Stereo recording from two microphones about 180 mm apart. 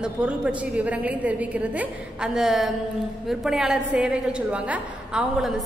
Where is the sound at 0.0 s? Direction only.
5° right (ahead or behind).